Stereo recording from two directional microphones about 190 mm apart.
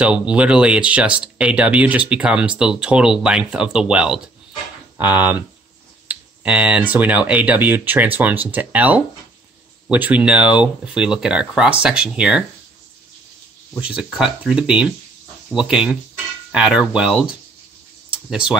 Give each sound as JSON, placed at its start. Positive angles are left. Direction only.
{"t": 0.0, "sound": "speech", "side_deg": -5}
{"t": 13.7, "sound": "speech", "side_deg": -5}